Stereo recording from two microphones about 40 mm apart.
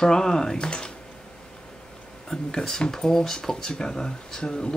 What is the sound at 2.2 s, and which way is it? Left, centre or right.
Speech, centre.